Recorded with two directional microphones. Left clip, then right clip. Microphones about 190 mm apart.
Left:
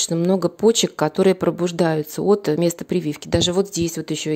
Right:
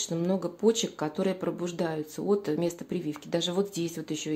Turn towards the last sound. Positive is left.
turn(degrees=45)  # may be behind; listen again after turning